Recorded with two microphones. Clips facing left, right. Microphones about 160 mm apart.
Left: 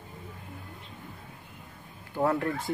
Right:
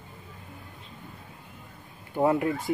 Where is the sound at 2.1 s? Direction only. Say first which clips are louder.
Right 3 dB; 15° right (ahead or behind).